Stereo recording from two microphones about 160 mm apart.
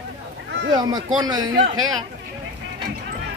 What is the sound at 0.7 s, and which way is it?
Speech, 25° right (ahead or behind).